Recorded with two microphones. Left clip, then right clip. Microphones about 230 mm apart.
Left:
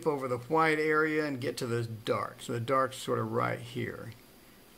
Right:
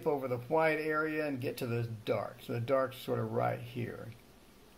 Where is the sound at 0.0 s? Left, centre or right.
Left.